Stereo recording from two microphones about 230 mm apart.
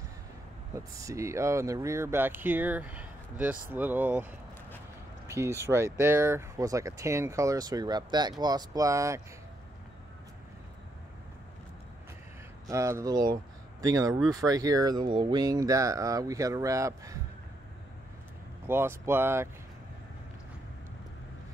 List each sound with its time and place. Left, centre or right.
0.7 s speech: centre
5.3 s speech: centre
12.6 s speech: centre
18.7 s speech: centre